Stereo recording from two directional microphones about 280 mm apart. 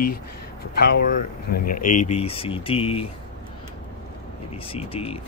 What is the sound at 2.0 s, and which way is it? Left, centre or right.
Speech, left.